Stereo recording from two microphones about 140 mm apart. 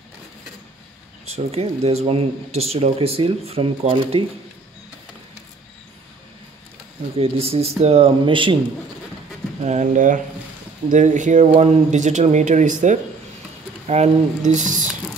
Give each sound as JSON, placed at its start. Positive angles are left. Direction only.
{"t": 1.3, "sound": "speech", "side_deg": -45}
{"t": 7.2, "sound": "speech", "side_deg": -45}
{"t": 9.6, "sound": "speech", "side_deg": -55}